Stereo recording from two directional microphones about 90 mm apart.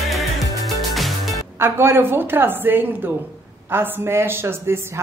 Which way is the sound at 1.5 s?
30° right (ahead or behind).